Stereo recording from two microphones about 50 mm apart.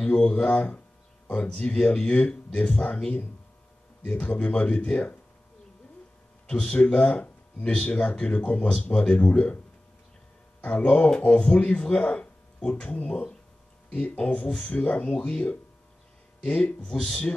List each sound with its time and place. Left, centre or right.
0.0 s speech: centre
4.0 s speech: left
6.5 s speech: left
10.6 s speech: left
16.9 s speech: centre